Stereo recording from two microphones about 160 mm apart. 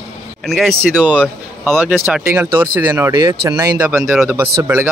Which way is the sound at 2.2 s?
15° right (ahead or behind).